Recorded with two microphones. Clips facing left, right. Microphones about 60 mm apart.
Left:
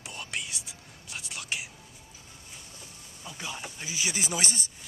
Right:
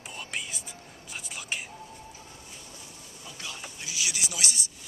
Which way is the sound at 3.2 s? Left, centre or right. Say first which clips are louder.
Left 3 dB; centre.